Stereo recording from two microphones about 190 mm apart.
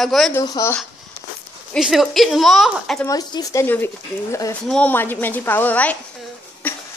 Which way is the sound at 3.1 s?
20° left (ahead or behind).